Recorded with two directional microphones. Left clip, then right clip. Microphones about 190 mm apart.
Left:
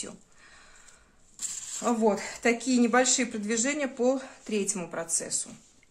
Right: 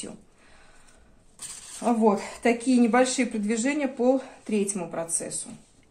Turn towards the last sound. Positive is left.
turn(degrees=25)  # may be behind; listen again after turning